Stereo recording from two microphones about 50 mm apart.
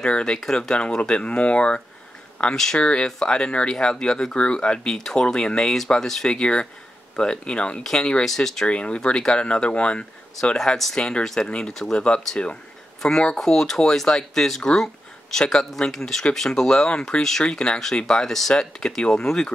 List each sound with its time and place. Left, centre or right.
0.0 s speech: centre
2.5 s speech: centre
2.8 s speech: left
6.2 s speech: centre
8.6 s speech: left